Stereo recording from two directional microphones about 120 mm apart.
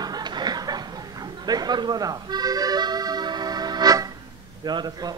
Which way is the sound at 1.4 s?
35° right (ahead or behind).